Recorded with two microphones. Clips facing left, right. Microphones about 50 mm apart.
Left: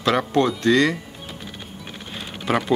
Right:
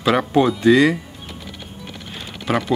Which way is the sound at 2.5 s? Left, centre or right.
Centre.